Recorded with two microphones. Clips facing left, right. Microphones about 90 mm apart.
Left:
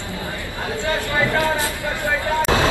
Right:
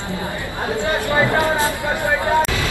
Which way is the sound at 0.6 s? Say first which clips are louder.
Right 3 dB; 25° right (ahead or behind).